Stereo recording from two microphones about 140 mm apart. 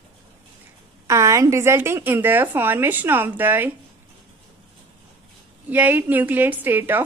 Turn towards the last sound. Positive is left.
turn(degrees=-15)  # may be behind; listen again after turning